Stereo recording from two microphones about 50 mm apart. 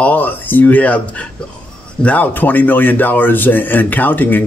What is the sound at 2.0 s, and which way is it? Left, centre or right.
Speech, left.